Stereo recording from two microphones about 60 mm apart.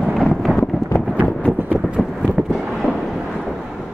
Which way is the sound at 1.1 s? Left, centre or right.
Left.